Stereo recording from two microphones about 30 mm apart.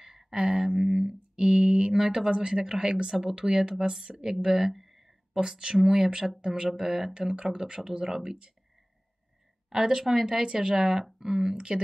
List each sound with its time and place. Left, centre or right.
0.0 s a sound: centre
0.3 s speech: right
0.7 s a sound: centre
1.3 s speech: right
4.7 s a sound: centre
5.6 s speech: centre
6.8 s speech: centre
7.2 s speech: right
9.7 s speech: right
11.5 s speech: right